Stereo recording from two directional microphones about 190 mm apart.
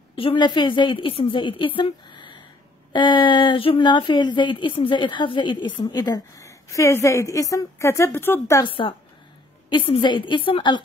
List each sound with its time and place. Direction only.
0.1 s speech: 30° left (ahead or behind)
1.8 s a sound: 25° left (ahead or behind)
2.9 s speech: 25° left (ahead or behind)
8.6 s speech: 25° left (ahead or behind)